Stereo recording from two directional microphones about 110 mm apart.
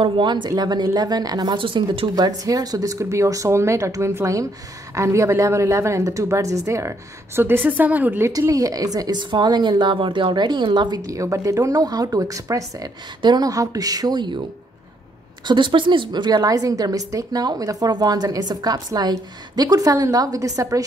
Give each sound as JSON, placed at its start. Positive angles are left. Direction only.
{"t": 0.0, "sound": "a woman's voice", "side_deg": -45}
{"t": 1.6, "sound": "a woman's voice", "side_deg": -50}
{"t": 8.3, "sound": "a woman's voice", "side_deg": -30}
{"t": 11.1, "sound": "a woman's voice", "side_deg": -30}
{"t": 15.4, "sound": "a woman's voice", "side_deg": -45}